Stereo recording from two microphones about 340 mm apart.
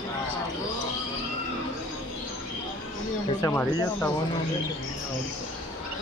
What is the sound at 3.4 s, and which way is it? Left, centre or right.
Speech, centre.